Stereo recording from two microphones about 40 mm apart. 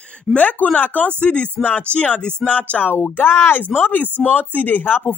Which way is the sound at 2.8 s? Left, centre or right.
Left.